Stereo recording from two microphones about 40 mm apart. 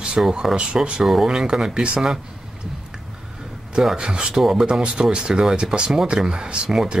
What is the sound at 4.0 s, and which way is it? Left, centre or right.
Speech, right.